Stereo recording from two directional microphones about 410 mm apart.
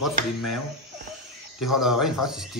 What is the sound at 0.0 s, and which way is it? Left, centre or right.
Speech, left.